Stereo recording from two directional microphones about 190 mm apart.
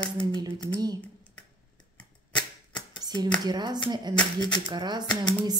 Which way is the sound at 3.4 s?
20° right (ahead or behind).